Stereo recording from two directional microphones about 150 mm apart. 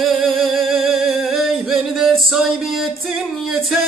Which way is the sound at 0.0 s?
Centre (ahead or behind).